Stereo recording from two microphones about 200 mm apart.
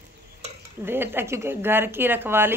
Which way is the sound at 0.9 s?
10° right (ahead or behind).